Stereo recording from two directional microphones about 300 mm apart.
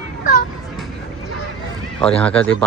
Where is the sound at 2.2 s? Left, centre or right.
Centre.